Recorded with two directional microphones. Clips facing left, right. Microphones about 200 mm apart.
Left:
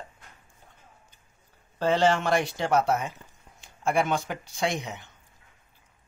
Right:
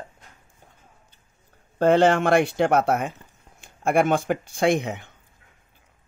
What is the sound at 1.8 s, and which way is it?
Speech, 55° right (ahead or behind).